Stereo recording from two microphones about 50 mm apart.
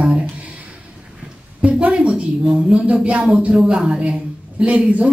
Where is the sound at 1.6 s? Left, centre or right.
Right.